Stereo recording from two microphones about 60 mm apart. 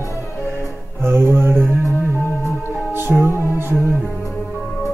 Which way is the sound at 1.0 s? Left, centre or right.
Right.